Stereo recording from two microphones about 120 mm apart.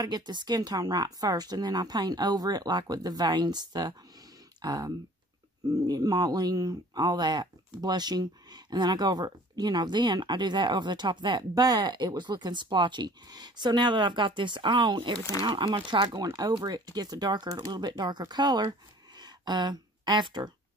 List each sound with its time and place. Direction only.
0.0 s speech: 35° right (ahead or behind)